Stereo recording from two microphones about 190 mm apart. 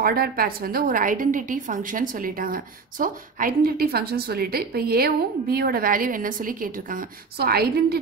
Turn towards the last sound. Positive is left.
turn(degrees=-55)  # may be behind; listen again after turning